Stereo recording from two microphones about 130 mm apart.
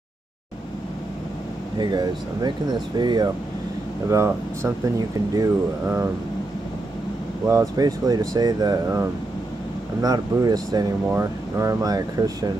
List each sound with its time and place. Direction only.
1.8 s speech: 35° right (ahead or behind)
4.1 s speech: 20° right (ahead or behind)
7.4 s speech: 25° right (ahead or behind)
10.0 s speech: 30° right (ahead or behind)